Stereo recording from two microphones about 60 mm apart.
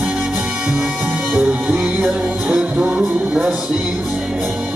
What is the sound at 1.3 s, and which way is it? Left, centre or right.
Music, centre.